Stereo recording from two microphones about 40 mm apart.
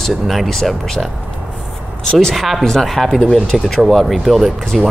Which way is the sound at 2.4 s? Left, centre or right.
Centre.